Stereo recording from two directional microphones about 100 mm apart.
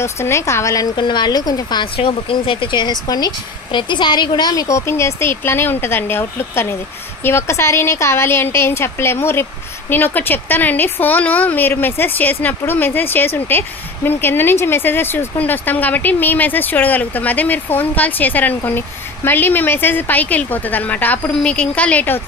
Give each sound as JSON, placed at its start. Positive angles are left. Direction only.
{"t": 0.0, "sound": "speech", "side_deg": 30}
{"t": 0.9, "sound": "a woman's voice", "side_deg": 50}
{"t": 2.0, "sound": "speech", "side_deg": 70}